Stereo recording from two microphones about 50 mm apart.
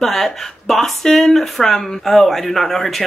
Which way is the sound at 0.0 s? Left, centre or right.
Centre.